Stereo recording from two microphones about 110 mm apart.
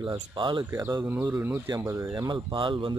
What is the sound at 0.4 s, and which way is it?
Speech, 45° right (ahead or behind).